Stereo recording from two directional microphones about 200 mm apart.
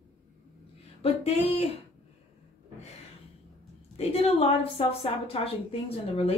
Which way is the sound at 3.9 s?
30° left (ahead or behind).